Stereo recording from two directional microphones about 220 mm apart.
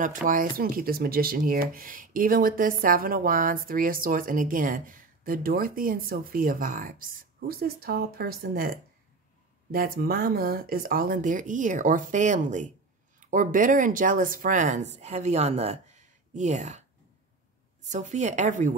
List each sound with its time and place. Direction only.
0.0 s speech: 40° right (ahead or behind)
17.8 s speech: 35° right (ahead or behind)